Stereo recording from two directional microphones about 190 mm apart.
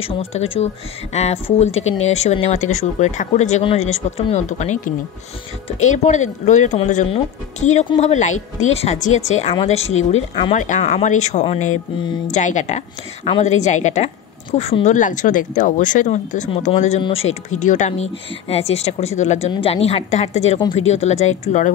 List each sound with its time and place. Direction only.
0.0 s speech: 30° left (ahead or behind)